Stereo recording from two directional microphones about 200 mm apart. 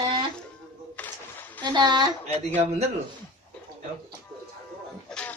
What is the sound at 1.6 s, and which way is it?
Speech, 20° right (ahead or behind).